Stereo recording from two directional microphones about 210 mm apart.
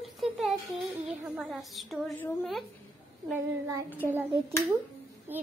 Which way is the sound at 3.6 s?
15° right (ahead or behind).